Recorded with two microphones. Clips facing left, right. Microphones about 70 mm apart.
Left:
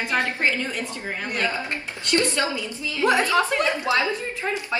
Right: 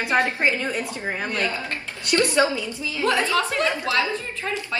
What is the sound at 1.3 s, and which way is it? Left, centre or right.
Speech, left.